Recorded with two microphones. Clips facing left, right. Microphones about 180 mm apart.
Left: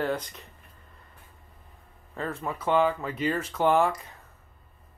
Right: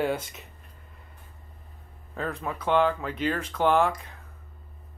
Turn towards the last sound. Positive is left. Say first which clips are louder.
# even
turn(degrees=5)  # may be behind; listen again after turning